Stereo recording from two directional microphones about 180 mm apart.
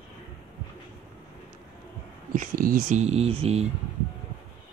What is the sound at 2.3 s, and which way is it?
Speech, 50° right (ahead or behind).